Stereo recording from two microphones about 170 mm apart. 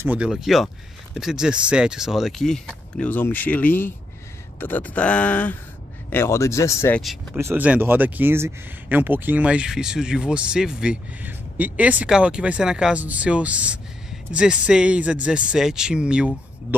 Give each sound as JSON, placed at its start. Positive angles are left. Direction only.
{"t": 0.0, "sound": "speech", "side_deg": -5}
{"t": 7.3, "sound": "speech", "side_deg": -15}